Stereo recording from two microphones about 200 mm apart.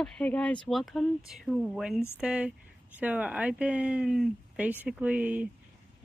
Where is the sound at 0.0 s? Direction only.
5° left (ahead or behind).